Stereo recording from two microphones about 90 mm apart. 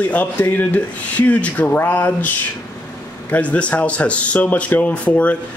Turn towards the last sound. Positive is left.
turn(degrees=15)  # may be behind; listen again after turning